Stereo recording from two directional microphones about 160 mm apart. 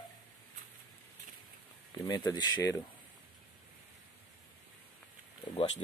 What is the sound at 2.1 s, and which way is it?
Speech, 25° left (ahead or behind).